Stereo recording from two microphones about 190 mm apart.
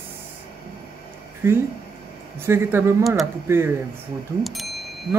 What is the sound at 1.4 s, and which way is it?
Speech, 15° right (ahead or behind).